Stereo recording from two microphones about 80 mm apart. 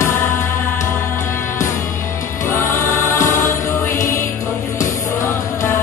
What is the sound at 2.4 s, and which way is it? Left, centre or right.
Choir, left.